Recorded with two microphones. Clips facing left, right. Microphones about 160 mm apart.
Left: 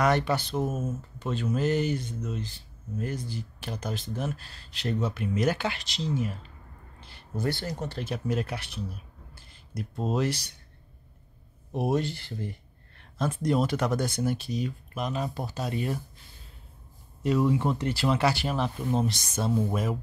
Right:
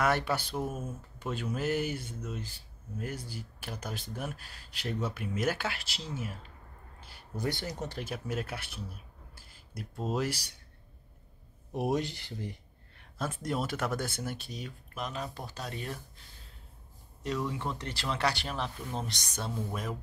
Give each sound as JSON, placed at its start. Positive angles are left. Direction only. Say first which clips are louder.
{"t": 0.0, "sound": "speech", "louder": "left 4 dB", "side_deg": -5}
{"t": 0.6, "sound": "speech", "louder": "left 6 dB", "side_deg": 25}
{"t": 1.2, "sound": "speech", "louder": "left 5 dB", "side_deg": -10}
{"t": 7.0, "sound": "a sound", "louder": "left 4 dB", "side_deg": -5}
{"t": 7.9, "sound": "speech", "louder": "left 6 dB", "side_deg": -10}
{"t": 9.3, "sound": "a sound", "louder": "left 8 dB", "side_deg": -5}
{"t": 10.1, "sound": "speech", "louder": "left 4 dB", "side_deg": -10}
{"t": 11.9, "sound": "speech", "louder": "left 5 dB", "side_deg": -15}
{"t": 17.2, "sound": "speech", "louder": "left 9 dB", "side_deg": 10}